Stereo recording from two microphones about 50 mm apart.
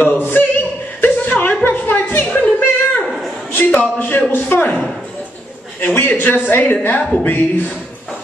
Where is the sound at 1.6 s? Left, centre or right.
Left.